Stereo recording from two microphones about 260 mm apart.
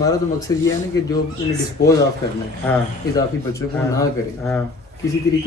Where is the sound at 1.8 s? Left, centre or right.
Left.